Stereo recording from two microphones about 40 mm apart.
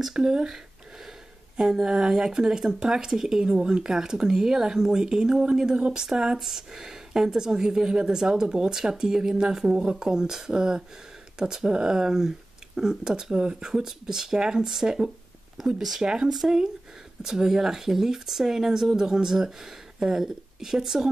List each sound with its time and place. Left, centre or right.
0.0 s speech: centre
1.6 s speech: centre